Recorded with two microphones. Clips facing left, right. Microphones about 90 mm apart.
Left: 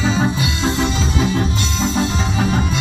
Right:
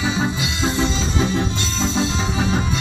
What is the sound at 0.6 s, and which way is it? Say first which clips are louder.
Music: left 1 dB; 15° left (ahead or behind).